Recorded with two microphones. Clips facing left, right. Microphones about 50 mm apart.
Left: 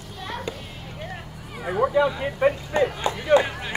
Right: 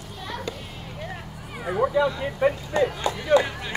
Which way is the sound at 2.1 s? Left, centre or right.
Left.